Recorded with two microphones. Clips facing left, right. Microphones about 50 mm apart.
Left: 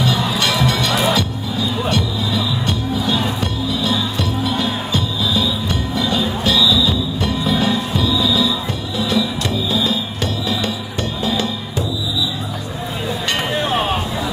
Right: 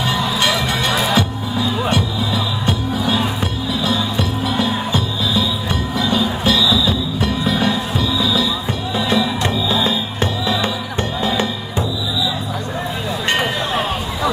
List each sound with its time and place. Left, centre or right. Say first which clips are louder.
0.0 s music: even; right
1.9 s music: right 1 dB; centre
8.9 s music: right 1 dB; right